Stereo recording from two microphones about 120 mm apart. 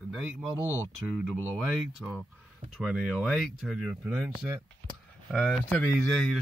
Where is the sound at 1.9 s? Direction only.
5° right (ahead or behind).